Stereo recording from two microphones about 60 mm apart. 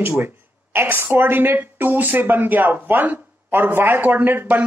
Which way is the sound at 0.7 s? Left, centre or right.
Right.